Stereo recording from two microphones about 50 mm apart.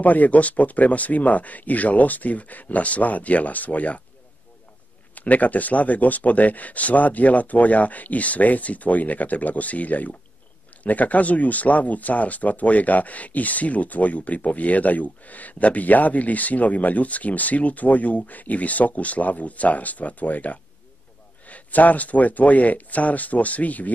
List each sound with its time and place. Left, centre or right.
0.0 s speech: left
5.1 s speech: left